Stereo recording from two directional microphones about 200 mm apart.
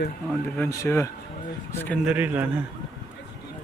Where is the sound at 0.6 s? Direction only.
15° left (ahead or behind).